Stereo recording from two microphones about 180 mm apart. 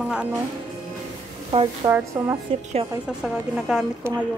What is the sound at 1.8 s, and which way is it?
Speech, 20° right (ahead or behind).